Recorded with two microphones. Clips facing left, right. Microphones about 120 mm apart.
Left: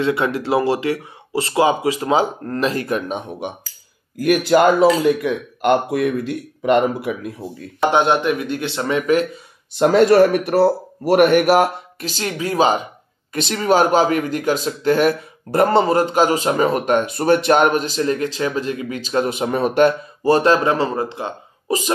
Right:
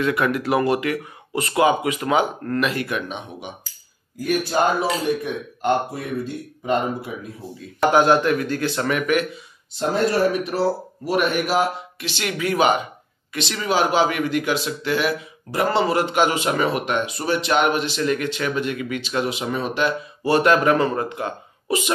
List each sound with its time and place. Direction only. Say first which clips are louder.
0.0 s speech: left 2 dB; 25° left (ahead or behind); by 3.5 s 50° left (ahead or behind)
4.2 s speech: left 6 dB; 80° left
7.9 s speech: right 1 dB; 25° left (ahead or behind)
9.8 s speech: left 8 dB; 75° left (ahead or behind); by 11.7 s 60° left (ahead or behind)
12.0 s speech: left 2 dB; 35° left (ahead or behind)
13.3 s speech: left 6 dB; 45° left (ahead or behind)
20.3 s speech: right 1 dB; 35° left (ahead or behind)